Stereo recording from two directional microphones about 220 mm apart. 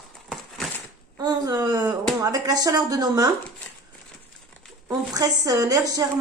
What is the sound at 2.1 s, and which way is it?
A woman's voice, 15° right (ahead or behind).